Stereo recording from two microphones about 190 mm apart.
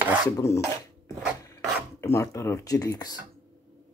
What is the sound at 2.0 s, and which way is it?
Speech, 15° left (ahead or behind).